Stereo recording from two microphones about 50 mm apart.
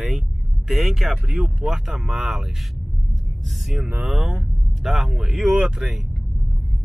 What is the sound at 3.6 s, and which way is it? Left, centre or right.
Speech, centre.